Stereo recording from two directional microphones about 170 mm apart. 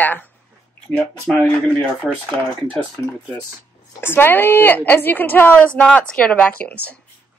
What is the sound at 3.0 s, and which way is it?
A woman's voice, 20° left (ahead or behind).